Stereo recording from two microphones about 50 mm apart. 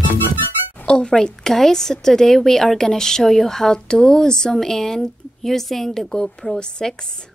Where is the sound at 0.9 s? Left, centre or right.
Centre.